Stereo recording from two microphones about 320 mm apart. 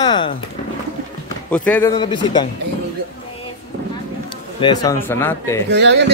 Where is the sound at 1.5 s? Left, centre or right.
Centre.